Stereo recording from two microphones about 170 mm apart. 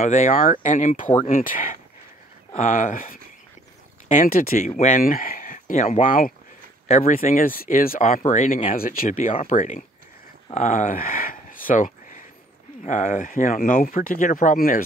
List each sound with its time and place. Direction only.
0.0 s speech: 45° left (ahead or behind)
8.6 s speech: 55° left (ahead or behind)
9.3 s speech: 45° left (ahead or behind)